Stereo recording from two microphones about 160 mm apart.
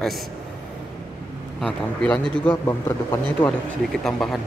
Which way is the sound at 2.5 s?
20° left (ahead or behind).